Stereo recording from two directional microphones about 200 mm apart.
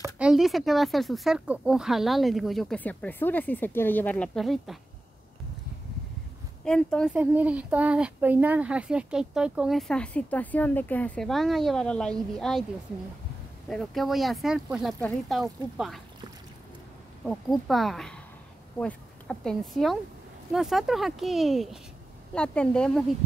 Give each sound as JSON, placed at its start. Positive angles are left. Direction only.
{"t": 0.0, "sound": "speech", "side_deg": -5}
{"t": 6.6, "sound": "speech", "side_deg": 5}
{"t": 13.7, "sound": "speech", "side_deg": 0}
{"t": 17.2, "sound": "speech", "side_deg": 0}